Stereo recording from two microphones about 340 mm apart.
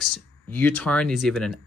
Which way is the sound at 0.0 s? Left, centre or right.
Centre.